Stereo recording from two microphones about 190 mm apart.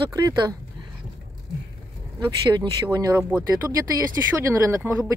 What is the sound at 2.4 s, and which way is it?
Speech, 20° right (ahead or behind).